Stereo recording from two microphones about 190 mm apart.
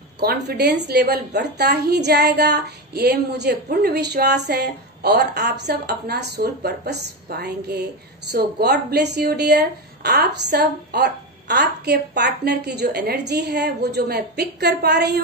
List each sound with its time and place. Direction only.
0.2 s a woman's voice: 55° right (ahead or behind)